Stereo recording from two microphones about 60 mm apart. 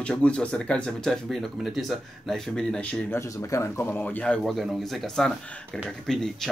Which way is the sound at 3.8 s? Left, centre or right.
Left.